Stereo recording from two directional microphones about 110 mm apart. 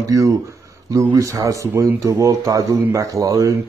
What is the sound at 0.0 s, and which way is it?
Speech, 30° right (ahead or behind).